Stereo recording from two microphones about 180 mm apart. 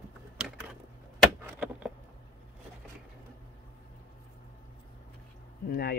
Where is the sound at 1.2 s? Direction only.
5° right (ahead or behind).